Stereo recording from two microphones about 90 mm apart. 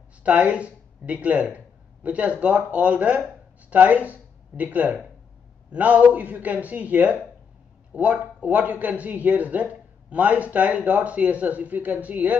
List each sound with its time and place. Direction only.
0.2 s a man's voice: 15° right (ahead or behind)